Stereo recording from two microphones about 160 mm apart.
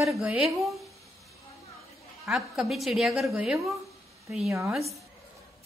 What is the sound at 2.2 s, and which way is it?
A woman's voice, centre (ahead or behind).